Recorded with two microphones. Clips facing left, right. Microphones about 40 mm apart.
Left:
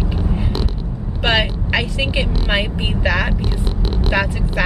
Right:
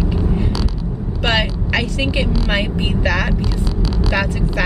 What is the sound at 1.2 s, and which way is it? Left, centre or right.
Speech, centre.